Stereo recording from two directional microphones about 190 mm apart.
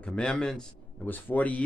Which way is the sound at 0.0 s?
5° left (ahead or behind).